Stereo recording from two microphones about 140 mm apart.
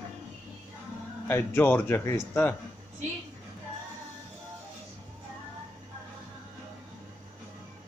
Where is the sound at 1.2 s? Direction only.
15° left (ahead or behind).